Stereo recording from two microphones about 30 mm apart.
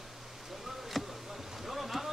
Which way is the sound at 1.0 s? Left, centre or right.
Centre.